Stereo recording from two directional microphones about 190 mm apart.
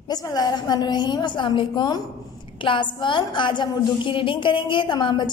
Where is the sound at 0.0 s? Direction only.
20° left (ahead or behind).